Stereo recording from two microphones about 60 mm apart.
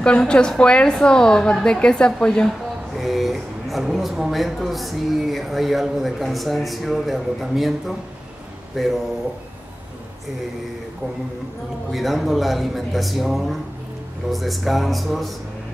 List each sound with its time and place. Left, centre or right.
0.0 s a woman's voice: centre
3.0 s speech: centre
8.8 s speech: centre
11.9 s speech: centre